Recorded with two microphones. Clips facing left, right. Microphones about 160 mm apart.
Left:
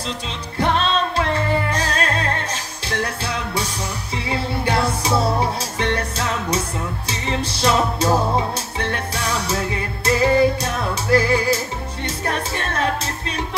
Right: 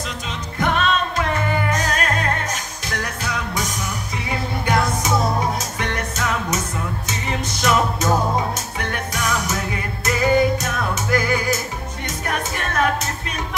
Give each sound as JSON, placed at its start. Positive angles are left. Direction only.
{"t": 0.6, "sound": "music", "side_deg": 30}